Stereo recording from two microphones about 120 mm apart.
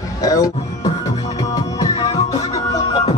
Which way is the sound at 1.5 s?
30° left (ahead or behind).